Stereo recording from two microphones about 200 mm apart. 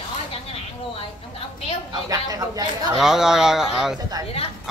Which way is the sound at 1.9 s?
20° right (ahead or behind).